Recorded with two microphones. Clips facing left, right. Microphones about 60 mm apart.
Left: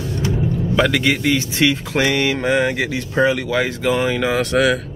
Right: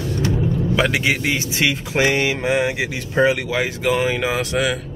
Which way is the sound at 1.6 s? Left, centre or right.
Centre.